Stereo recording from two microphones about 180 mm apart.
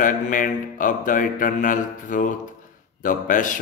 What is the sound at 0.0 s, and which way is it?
Speech, 50° left (ahead or behind).